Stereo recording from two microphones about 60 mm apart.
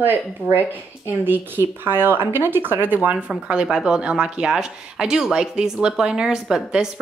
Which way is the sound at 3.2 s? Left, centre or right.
Centre.